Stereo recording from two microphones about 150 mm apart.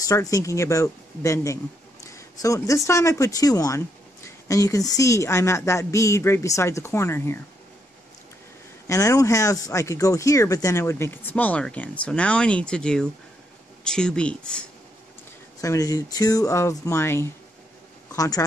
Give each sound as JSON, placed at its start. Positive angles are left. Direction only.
{"t": 0.0, "sound": "speech", "side_deg": 20}
{"t": 8.8, "sound": "speech", "side_deg": 20}
{"t": 15.6, "sound": "speech", "side_deg": 25}